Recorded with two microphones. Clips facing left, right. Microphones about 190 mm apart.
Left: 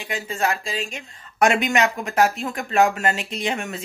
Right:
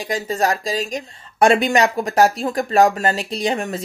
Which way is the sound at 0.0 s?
40° right (ahead or behind).